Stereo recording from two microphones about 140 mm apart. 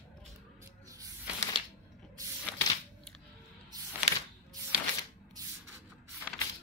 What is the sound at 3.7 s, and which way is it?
Music, 25° right (ahead or behind).